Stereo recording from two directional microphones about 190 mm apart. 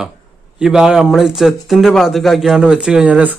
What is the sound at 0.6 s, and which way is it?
A man's voice, 5° right (ahead or behind).